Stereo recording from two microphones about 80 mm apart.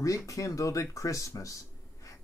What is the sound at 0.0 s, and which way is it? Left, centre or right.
Speech, left.